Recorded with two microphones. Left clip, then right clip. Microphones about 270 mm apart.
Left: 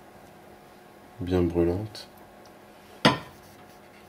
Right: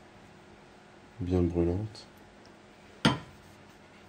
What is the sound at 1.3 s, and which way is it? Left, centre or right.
Speech, left.